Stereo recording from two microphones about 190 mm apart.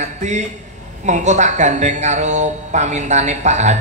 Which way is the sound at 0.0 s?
40° right (ahead or behind).